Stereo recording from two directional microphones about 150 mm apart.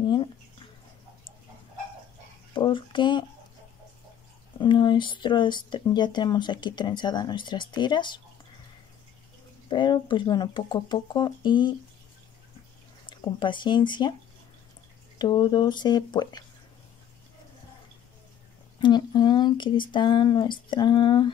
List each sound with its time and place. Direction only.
0.0 s a sound: 30° left (ahead or behind)
2.5 s speech: 35° left (ahead or behind)
4.6 s speech: 30° left (ahead or behind)
9.7 s speech: 30° left (ahead or behind)
13.0 s speech: 30° left (ahead or behind)
15.1 s speech: 30° left (ahead or behind)
18.8 s speech: 30° left (ahead or behind)